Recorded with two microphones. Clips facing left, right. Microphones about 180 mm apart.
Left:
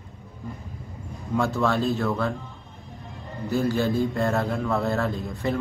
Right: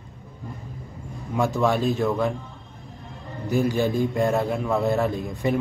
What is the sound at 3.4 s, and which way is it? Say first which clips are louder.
A man's voice: right 1 dB; 15° right (ahead or behind).